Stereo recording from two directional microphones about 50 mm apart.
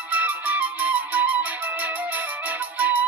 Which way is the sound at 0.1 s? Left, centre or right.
Right.